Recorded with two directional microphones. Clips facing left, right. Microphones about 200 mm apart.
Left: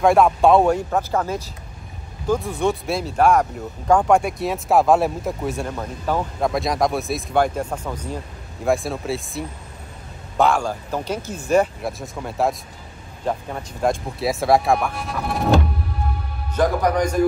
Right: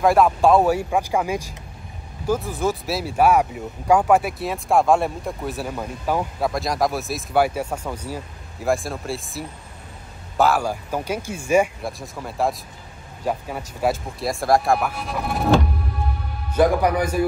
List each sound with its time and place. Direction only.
0.0 s speech: centre (ahead or behind)
16.5 s speech: 10° right (ahead or behind)